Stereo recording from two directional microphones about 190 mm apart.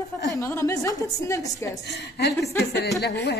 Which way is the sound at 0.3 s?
15° left (ahead or behind).